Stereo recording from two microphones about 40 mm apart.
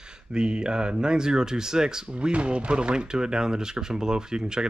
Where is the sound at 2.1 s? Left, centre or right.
Right.